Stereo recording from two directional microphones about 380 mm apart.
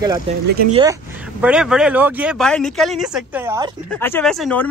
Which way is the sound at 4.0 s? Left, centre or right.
Centre.